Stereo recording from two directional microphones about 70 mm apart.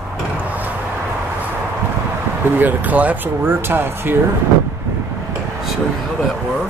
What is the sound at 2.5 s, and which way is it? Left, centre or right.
Speech, right.